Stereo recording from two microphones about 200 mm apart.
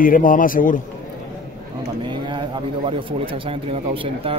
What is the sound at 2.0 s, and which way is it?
A man's voice, 25° right (ahead or behind).